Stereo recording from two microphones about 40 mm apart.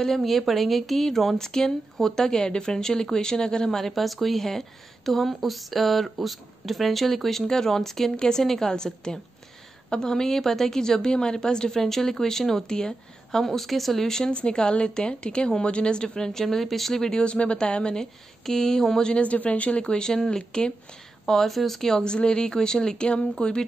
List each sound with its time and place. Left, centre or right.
0.0 s speech: centre
3.7 s a woman's voice: centre
11.7 s speech: centre
14.0 s speech: centre
14.3 s a woman's voice: left
17.2 s a woman's voice: left
18.4 s speech: centre
19.2 s speech: left
19.9 s a woman's voice: centre
21.3 s speech: centre
22.0 s a woman's voice: left
23.0 s speech: left